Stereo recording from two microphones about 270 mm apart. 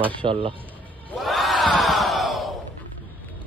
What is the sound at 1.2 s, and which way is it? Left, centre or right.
Crowd, centre.